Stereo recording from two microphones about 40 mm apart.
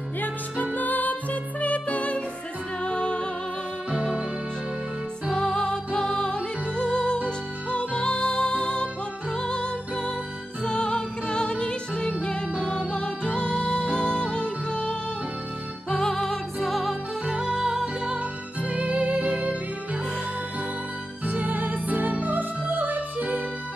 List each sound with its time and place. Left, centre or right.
0.7 s music: left
3.9 s music: centre
5.3 s music: centre
17.3 s music: centre
18.6 s music: right
21.3 s music: right